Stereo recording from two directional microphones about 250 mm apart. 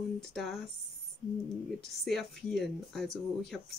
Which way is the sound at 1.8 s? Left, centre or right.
Centre.